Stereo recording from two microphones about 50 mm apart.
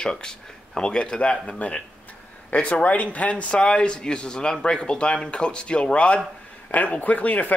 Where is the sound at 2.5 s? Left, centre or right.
Left.